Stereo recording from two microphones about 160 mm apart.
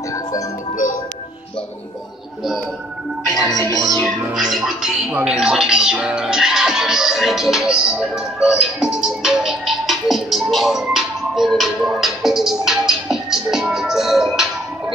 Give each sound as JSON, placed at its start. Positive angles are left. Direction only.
{"t": 3.3, "sound": "speech", "side_deg": 0}
{"t": 3.7, "sound": "music", "side_deg": -20}
{"t": 4.0, "sound": "speech", "side_deg": -5}